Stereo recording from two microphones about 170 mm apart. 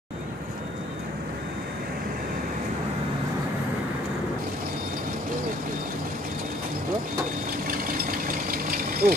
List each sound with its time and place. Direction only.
7.6 s engine: 55° right (ahead or behind)